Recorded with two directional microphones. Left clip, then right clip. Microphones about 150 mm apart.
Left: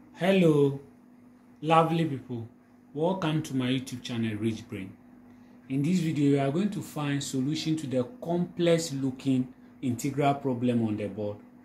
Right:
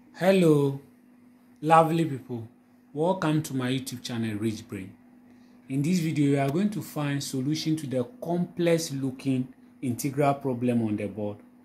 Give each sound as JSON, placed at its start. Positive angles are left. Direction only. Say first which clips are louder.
{"t": 0.1, "sound": "speech", "louder": "right 2 dB", "side_deg": -40}